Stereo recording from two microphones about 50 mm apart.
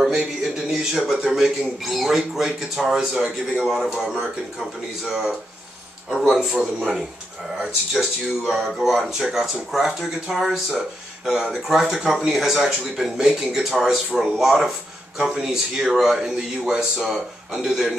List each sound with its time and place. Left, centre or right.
0.7 s a man's voice: centre
8.0 s a man's voice: centre